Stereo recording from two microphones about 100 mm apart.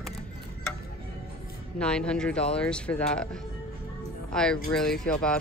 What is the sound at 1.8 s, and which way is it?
Speech, 10° left (ahead or behind).